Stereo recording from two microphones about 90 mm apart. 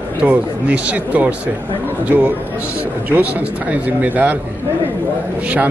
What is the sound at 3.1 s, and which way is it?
A man's voice, 15° right (ahead or behind).